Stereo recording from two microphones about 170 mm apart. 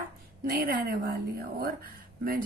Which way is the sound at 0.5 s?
55° right (ahead or behind).